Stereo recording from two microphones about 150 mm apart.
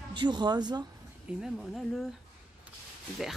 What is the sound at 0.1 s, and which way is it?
Speech, 30° right (ahead or behind).